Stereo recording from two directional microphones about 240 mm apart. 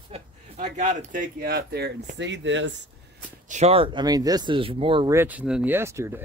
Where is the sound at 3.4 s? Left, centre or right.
Right.